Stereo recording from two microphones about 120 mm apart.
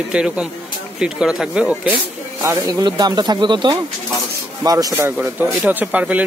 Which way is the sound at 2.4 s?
25° right (ahead or behind).